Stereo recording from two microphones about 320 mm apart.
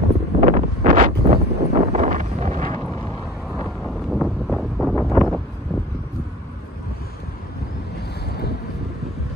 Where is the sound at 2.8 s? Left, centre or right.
Centre.